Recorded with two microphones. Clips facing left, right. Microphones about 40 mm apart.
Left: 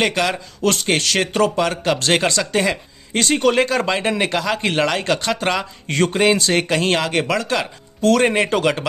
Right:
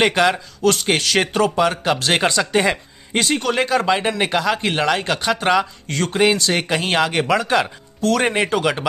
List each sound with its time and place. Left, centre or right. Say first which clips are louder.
0.0 s speech: right 3 dB; centre
0.6 s speech: left 2 dB; centre
2.6 s a sound: right 1 dB; right
3.3 s speech: left 4 dB; centre
5.9 s a man's voice: left 4 dB; centre
6.1 s speech: right 1 dB; centre